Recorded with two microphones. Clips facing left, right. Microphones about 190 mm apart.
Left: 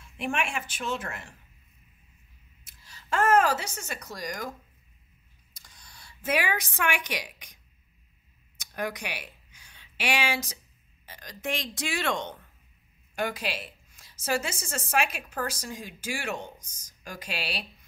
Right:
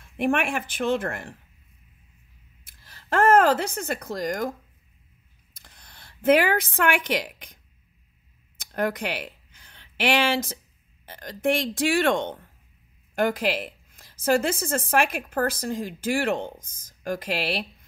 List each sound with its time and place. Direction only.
0.0 s a woman's voice: 55° right (ahead or behind)
2.6 s a woman's voice: 55° right (ahead or behind)
8.5 s a sound: 55° right (ahead or behind)
11.1 s a woman's voice: 55° right (ahead or behind)